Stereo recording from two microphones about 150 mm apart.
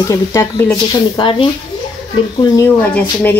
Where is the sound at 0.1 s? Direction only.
20° left (ahead or behind).